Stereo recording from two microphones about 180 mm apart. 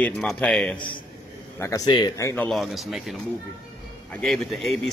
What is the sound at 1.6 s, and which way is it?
Speech, 20° left (ahead or behind).